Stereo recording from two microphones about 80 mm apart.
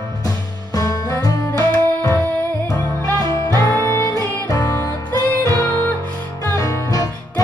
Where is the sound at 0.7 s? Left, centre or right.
Left.